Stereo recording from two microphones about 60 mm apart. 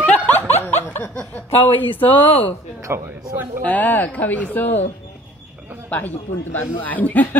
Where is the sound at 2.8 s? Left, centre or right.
Right.